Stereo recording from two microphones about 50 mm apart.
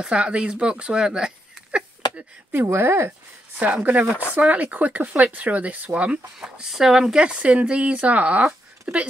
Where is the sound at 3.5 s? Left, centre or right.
Right.